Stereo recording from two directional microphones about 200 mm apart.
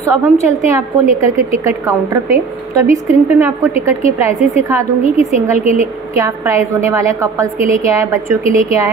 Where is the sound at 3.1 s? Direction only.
15° right (ahead or behind).